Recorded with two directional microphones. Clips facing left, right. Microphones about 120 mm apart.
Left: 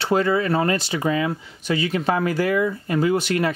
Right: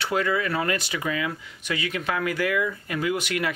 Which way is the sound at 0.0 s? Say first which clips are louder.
Left 5 dB; 30° left (ahead or behind).